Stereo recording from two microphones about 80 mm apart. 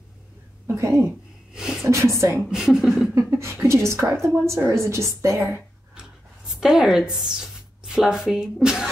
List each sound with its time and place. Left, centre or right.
0.7 s speech: right
1.5 s a sound: centre
1.9 s speech: right
2.5 s speech: centre
3.2 s speech: right
6.5 s speech: centre